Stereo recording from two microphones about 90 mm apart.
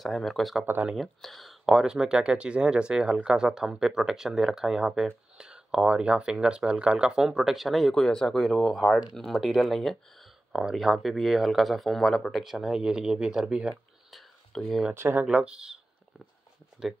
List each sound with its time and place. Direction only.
0.0 s speech: centre (ahead or behind)
14.1 s a sound: 5° left (ahead or behind)
15.0 s speech: 25° right (ahead or behind)
15.2 s speech: 10° right (ahead or behind)
16.8 s speech: 5° right (ahead or behind)